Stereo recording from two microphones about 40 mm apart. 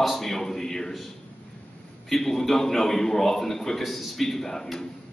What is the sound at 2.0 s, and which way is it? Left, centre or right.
A man's voice, centre.